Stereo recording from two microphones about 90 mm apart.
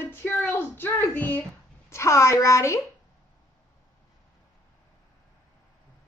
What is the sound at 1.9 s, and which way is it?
Speech, 35° left (ahead or behind).